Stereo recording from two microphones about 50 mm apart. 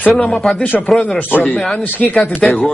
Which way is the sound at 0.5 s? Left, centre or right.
Left.